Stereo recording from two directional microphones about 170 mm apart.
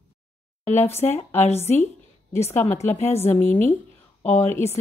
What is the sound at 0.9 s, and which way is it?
Speech, 40° left (ahead or behind).